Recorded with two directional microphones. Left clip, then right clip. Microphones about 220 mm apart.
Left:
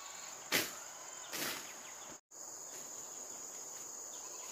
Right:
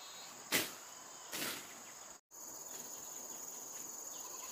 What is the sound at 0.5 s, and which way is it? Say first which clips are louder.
Power windows: left 1 dB; 5° left (ahead or behind).